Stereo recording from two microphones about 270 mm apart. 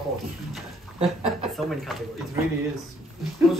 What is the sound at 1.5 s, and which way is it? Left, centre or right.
Speech, centre.